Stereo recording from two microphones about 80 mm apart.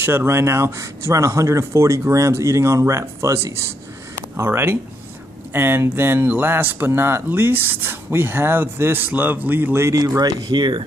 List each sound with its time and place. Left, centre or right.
0.0 s speech: right
4.4 s speech: right
9.9 s speech: right